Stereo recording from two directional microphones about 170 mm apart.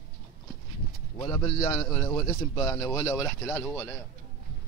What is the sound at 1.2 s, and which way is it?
A man's voice, 20° left (ahead or behind).